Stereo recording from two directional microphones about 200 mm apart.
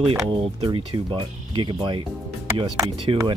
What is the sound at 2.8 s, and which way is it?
Speech, 25° right (ahead or behind).